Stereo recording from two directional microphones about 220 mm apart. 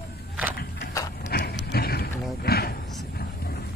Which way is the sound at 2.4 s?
45° left (ahead or behind).